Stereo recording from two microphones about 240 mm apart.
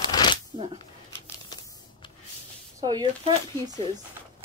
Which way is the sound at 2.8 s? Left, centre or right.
Centre.